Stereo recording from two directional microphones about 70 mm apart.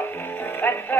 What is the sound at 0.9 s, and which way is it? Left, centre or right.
Music, left.